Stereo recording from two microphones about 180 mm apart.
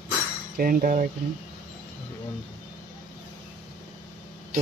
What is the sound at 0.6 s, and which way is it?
Speech, 55° right (ahead or behind).